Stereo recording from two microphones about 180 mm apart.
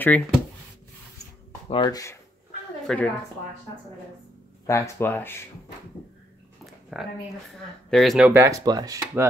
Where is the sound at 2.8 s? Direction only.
5° left (ahead or behind).